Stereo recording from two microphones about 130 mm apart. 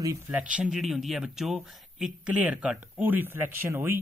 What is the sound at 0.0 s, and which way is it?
Speech, 25° right (ahead or behind).